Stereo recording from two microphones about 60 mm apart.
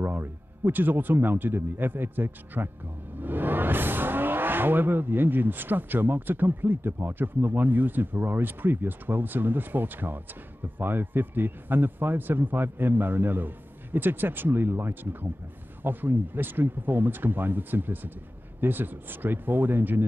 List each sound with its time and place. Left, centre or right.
0.0 s speech: right